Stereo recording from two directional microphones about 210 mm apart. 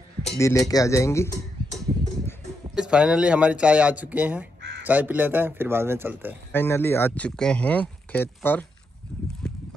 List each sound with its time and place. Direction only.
0.4 s speech: 15° left (ahead or behind)
2.7 s speech: 5° right (ahead or behind)
6.5 s speech: 10° left (ahead or behind)
9.4 s boat: 5° left (ahead or behind)